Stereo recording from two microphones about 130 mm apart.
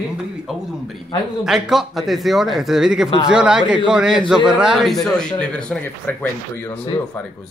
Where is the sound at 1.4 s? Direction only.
5° right (ahead or behind); by 6.7 s 15° left (ahead or behind).